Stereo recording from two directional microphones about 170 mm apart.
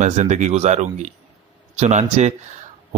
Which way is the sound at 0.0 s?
45° right (ahead or behind).